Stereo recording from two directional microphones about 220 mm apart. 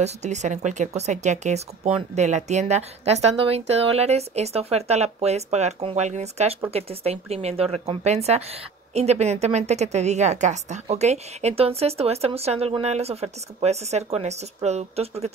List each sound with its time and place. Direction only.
0.0 s speech: 30° right (ahead or behind)